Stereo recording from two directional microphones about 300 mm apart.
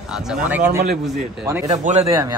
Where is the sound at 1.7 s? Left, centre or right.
Right.